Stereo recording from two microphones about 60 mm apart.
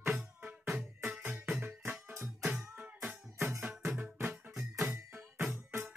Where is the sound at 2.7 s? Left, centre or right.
Right.